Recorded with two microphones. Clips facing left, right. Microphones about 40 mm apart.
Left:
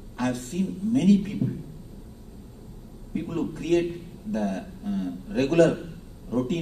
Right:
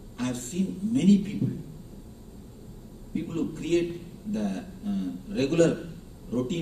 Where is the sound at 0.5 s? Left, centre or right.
Left.